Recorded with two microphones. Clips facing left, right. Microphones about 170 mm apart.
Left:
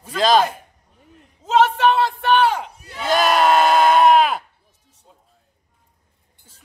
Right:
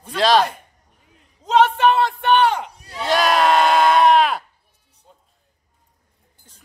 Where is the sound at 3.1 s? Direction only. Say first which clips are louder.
Left 1 dB; centre (ahead or behind).